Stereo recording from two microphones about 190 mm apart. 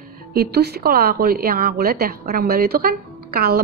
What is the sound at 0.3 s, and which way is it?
A woman's voice, 55° right (ahead or behind).